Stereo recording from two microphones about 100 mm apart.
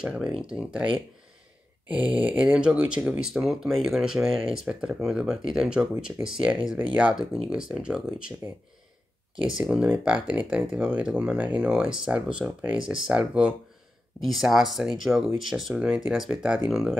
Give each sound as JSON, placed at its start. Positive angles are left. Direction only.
{"t": 0.0, "sound": "speech", "side_deg": -5}
{"t": 2.0, "sound": "speech", "side_deg": -15}
{"t": 9.6, "sound": "speech", "side_deg": -10}
{"t": 14.2, "sound": "speech", "side_deg": 0}